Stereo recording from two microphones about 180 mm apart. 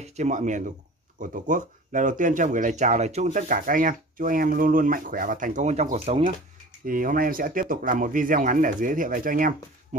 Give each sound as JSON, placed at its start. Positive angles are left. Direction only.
{"t": 0.0, "sound": "speech", "side_deg": -40}
{"t": 6.9, "sound": "speech", "side_deg": -50}